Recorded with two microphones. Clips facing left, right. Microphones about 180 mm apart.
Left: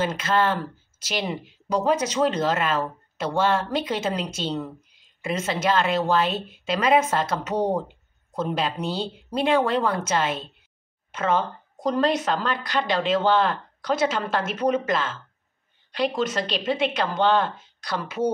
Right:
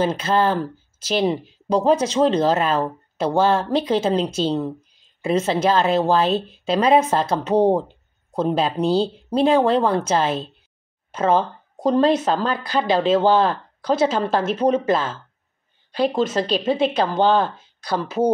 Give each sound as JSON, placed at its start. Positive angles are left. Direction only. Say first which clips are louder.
{"t": 0.0, "sound": "speech", "louder": "right 4 dB", "side_deg": -35}
{"t": 16.7, "sound": "speech", "louder": "right 4 dB", "side_deg": -35}